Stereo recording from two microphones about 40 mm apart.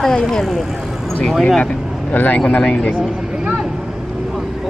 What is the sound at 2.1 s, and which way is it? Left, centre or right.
Speech, left.